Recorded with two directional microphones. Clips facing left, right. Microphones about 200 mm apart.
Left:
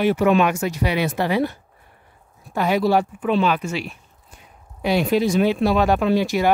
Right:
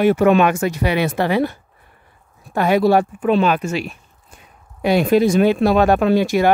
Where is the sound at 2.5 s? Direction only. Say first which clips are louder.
Right 4 dB; 55° right (ahead or behind).